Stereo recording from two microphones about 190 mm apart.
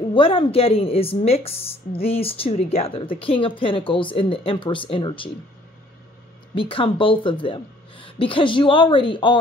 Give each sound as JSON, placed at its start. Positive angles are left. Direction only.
{"t": 0.1, "sound": "speech", "side_deg": 30}
{"t": 6.5, "sound": "speech", "side_deg": 30}